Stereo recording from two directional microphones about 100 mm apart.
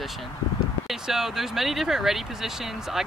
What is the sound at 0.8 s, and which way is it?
Speech, 5° right (ahead or behind).